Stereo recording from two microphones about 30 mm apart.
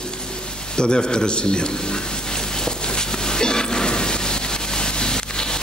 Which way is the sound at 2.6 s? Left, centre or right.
Left.